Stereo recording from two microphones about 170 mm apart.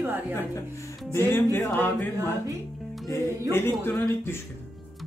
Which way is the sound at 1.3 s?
10° left (ahead or behind).